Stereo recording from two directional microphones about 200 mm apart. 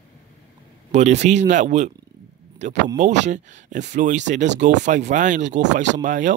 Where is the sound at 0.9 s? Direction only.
35° right (ahead or behind).